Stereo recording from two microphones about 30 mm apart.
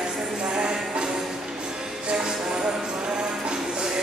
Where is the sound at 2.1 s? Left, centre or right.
Right.